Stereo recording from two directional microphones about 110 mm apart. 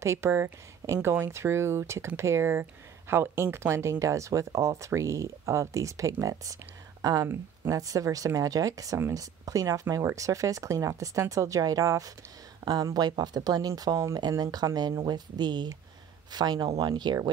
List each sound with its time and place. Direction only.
0.0 s speech: 25° right (ahead or behind); by 17.3 s 40° right (ahead or behind)